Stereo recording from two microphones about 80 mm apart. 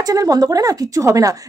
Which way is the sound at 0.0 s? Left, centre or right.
Right.